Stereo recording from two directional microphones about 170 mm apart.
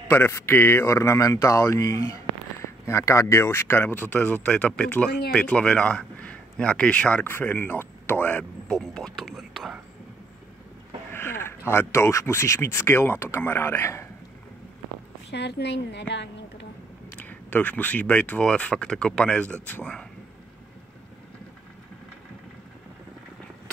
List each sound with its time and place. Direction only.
0.1 s speech: 10° left (ahead or behind)
11.1 s speech: 15° left (ahead or behind)
15.3 s a woman's voice: 80° left
17.2 s speech: 10° left (ahead or behind)